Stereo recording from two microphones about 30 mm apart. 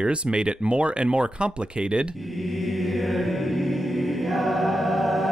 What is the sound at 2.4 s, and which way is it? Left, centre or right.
Mantra, centre.